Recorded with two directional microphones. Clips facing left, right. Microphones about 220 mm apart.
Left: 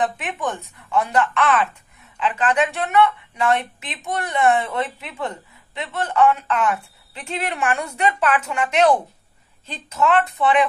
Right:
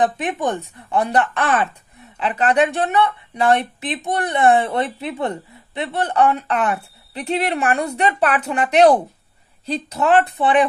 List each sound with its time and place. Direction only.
0.0 s a woman's voice: 35° right (ahead or behind)